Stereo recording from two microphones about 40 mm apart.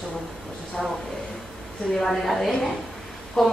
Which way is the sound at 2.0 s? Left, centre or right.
Centre.